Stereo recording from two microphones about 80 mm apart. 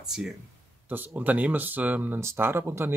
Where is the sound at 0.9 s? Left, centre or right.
Right.